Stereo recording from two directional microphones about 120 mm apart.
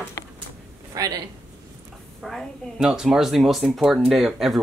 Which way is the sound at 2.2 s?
Centre (ahead or behind).